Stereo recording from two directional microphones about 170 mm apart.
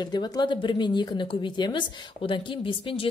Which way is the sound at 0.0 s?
25° left (ahead or behind).